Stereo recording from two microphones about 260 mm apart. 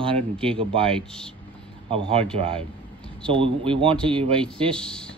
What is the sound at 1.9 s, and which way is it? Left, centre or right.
Speech, right.